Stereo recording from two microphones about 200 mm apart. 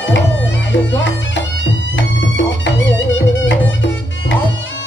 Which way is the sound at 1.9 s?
65° left (ahead or behind).